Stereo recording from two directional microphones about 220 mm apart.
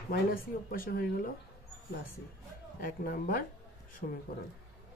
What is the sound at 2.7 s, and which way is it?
Speech, 40° left (ahead or behind).